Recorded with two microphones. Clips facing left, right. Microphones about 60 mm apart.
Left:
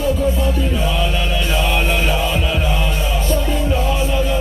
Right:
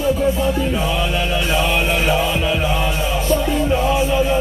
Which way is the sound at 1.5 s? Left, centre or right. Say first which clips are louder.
Even; centre.